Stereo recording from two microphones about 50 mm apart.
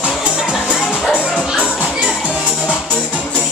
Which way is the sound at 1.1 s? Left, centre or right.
Left.